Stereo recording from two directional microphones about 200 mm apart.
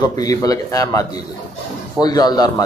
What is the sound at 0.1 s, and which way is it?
A man's voice, 20° left (ahead or behind).